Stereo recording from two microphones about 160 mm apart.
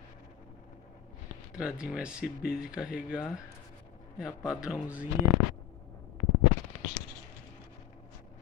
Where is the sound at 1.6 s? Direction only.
5° right (ahead or behind).